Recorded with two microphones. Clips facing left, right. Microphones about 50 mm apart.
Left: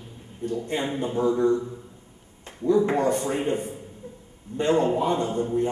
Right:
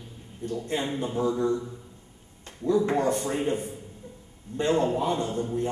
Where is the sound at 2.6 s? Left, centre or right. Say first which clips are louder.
Left 3 dB; centre.